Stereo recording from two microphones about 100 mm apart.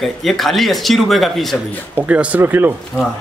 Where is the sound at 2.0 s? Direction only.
15° right (ahead or behind).